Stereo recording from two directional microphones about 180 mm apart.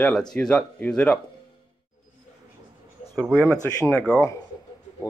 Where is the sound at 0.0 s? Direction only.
5° left (ahead or behind).